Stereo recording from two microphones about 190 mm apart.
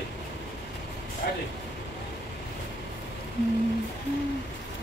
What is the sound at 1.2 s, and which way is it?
Vehicle, 55° left (ahead or behind).